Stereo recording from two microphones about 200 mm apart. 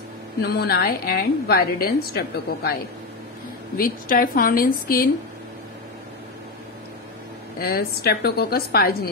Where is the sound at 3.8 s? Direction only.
45° left (ahead or behind).